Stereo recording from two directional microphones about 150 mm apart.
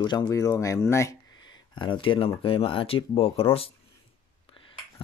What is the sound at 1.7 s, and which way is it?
Speech, 30° left (ahead or behind).